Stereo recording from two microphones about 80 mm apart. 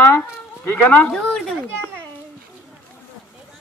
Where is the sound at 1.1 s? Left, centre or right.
Centre.